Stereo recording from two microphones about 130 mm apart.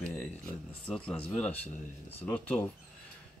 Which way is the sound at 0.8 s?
10° left (ahead or behind).